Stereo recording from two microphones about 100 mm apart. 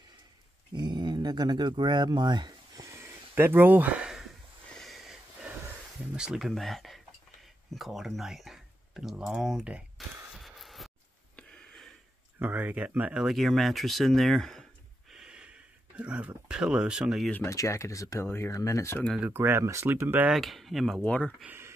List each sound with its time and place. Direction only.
0.7 s a sound: 45° right (ahead or behind); by 5.1 s centre (ahead or behind)
6.1 s speech: 5° right (ahead or behind)
9.3 s a sound: 5° right (ahead or behind)
12.4 s speech: 20° right (ahead or behind)
13.2 s speech: centre (ahead or behind)
17.5 s speech: 30° left (ahead or behind)
19.3 s speech: 25° right (ahead or behind)
20.2 s speech: centre (ahead or behind)
21.0 s speech: 10° left (ahead or behind)
21.5 s a sound: 25° right (ahead or behind)